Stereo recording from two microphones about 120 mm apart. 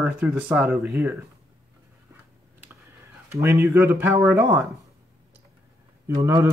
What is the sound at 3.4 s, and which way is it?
Speech, 20° right (ahead or behind).